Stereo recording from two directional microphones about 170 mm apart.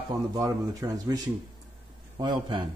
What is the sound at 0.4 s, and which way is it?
Speech, 20° right (ahead or behind).